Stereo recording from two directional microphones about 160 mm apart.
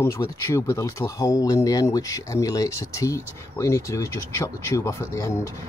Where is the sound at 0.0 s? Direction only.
20° left (ahead or behind).